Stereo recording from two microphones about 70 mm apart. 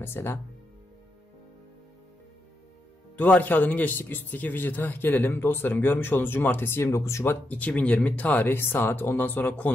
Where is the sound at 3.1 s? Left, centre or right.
Left.